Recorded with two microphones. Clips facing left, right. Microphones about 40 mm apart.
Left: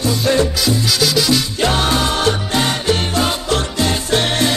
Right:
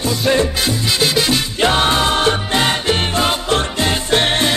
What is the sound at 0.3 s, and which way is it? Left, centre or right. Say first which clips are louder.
Music: even; right.